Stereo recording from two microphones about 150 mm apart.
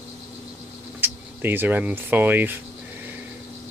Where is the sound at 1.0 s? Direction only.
15° right (ahead or behind).